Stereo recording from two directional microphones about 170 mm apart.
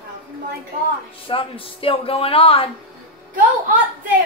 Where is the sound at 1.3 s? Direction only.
30° left (ahead or behind).